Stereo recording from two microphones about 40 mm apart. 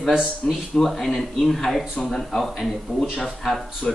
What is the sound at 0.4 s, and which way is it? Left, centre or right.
A man's voice, centre.